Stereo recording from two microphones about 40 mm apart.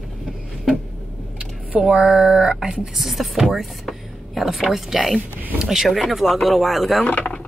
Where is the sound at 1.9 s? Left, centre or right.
Centre.